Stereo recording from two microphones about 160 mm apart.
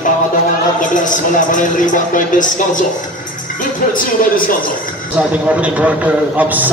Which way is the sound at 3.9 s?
60° left (ahead or behind).